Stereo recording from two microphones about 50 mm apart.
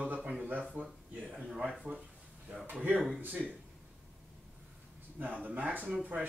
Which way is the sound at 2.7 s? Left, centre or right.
Right.